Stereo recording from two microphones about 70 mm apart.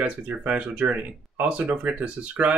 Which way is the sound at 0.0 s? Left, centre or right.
Right.